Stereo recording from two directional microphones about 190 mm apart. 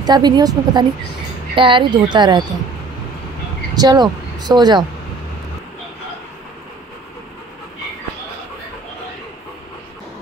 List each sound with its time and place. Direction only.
0.0 s speech: 20° right (ahead or behind)
3.7 s speech: 20° right (ahead or behind)